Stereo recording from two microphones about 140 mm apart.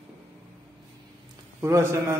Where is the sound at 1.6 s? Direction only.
20° right (ahead or behind).